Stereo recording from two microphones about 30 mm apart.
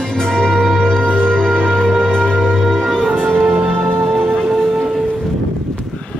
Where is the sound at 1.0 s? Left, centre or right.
Right.